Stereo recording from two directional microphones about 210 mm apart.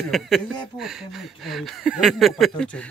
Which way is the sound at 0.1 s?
Centre (ahead or behind).